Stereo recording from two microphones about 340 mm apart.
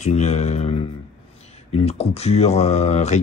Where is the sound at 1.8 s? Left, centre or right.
Centre.